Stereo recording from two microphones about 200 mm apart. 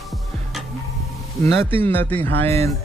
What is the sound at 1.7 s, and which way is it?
Speech, 10° left (ahead or behind).